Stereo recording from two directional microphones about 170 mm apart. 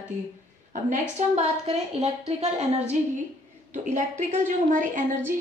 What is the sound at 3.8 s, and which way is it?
A woman's voice, 45° right (ahead or behind).